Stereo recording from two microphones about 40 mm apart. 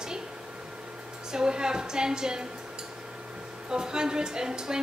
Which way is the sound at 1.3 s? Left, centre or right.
Centre.